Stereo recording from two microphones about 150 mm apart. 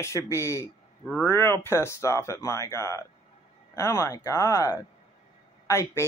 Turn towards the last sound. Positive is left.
turn(degrees=20)  # may be behind; listen again after turning